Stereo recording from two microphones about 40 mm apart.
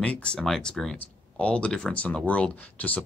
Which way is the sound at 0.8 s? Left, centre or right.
Centre.